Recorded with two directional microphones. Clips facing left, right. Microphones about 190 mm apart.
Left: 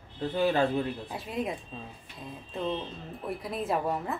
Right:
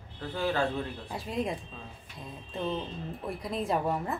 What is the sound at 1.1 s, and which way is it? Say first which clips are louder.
Speech: right 3 dB; centre (ahead or behind).